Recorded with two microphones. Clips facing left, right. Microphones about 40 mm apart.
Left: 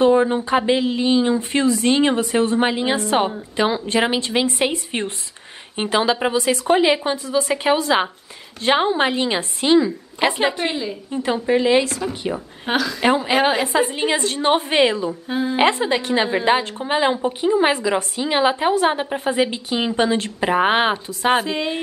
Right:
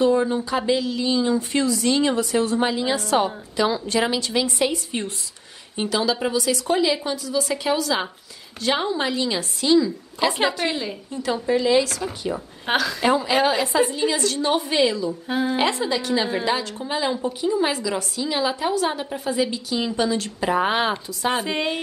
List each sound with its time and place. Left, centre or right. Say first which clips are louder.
0.0 s a woman's voice: left 4 dB; left
10.4 s a woman's voice: left 2 dB; left
12.6 s a woman's voice: left 1 dB; centre
13.0 s a woman's voice: left 3 dB; left
15.2 s a woman's voice: even; centre
15.5 s a woman's voice: left 8 dB; left